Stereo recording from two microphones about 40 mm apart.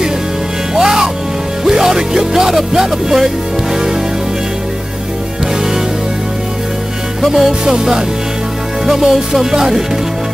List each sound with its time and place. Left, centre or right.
0.7 s music: centre
7.2 s music: centre